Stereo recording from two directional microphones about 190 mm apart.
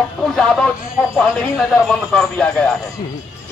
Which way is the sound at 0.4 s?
5° left (ahead or behind).